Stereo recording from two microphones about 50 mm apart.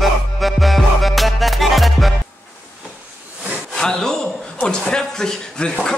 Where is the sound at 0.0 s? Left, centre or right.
Centre.